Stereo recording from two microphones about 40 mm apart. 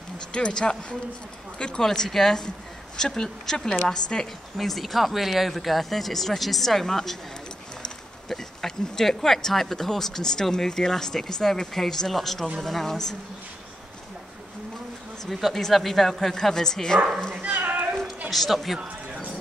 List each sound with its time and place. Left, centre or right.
0.3 s speech: left
2.0 s speech: centre
4.6 s speech: centre
8.3 s speech: centre
15.2 s speech: centre
17.6 s a sound: right
18.3 s speech: centre